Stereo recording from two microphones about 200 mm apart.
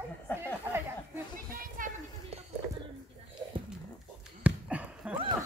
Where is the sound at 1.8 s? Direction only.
40° right (ahead or behind).